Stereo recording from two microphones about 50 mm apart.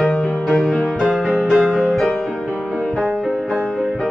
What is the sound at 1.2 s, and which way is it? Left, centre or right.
Music, right.